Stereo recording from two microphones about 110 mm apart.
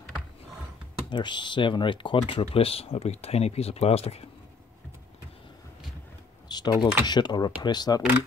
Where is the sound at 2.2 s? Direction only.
60° left (ahead or behind).